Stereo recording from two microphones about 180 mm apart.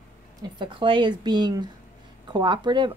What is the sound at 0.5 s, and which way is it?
Speech, 25° right (ahead or behind).